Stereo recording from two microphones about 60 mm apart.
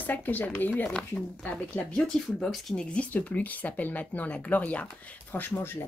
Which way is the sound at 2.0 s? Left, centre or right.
Centre.